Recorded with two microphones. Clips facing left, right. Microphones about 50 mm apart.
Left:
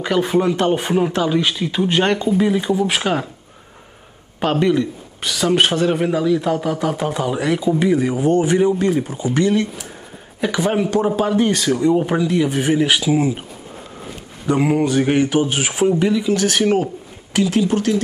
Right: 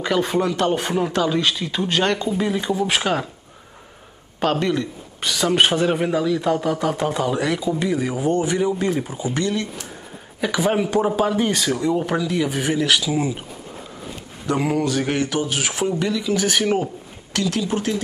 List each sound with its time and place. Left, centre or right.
0.0 s speech: centre
0.4 s mantra: left
0.7 s speech: centre
2.0 s mantra: left
2.2 s speech: centre
4.4 s speech: centre
5.2 s speech: centre
9.3 s speech: centre
12.7 s speech: centre
14.5 s speech: centre
14.8 s mantra: centre
15.6 s speech: centre
16.3 s speech: centre
17.7 s speech: centre